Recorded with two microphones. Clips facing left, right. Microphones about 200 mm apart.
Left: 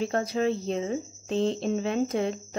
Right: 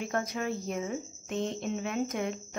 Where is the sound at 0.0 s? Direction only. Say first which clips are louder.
Left 7 dB; 30° left (ahead or behind).